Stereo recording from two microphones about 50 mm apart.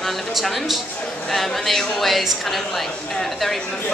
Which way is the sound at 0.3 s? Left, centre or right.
Centre.